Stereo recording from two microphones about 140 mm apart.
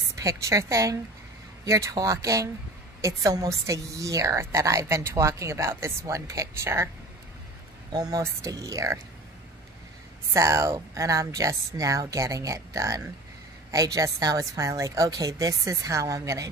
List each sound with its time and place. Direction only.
0.1 s a woman's voice: 20° right (ahead or behind)
7.9 s a woman's voice: 30° right (ahead or behind)
10.3 s a woman's voice: 20° right (ahead or behind)